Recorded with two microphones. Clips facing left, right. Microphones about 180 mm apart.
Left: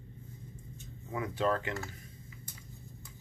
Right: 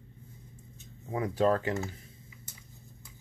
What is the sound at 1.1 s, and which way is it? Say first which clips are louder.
Speech: right 5 dB; 35° right (ahead or behind).